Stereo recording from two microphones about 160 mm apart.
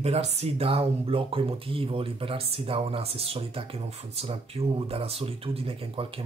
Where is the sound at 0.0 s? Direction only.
40° right (ahead or behind).